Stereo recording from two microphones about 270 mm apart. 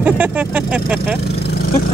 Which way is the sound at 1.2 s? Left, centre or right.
Left.